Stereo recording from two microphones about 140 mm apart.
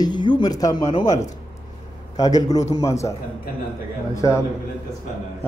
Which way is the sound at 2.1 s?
25° left (ahead or behind).